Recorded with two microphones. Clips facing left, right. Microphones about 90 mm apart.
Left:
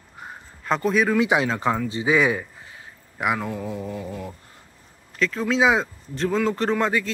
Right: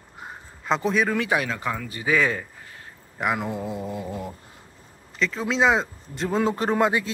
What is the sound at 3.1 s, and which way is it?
Speech, centre (ahead or behind).